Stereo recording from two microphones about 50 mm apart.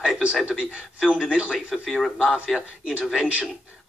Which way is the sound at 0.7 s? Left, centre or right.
Centre.